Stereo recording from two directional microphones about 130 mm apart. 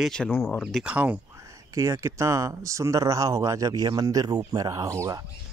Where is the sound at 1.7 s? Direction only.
25° right (ahead or behind).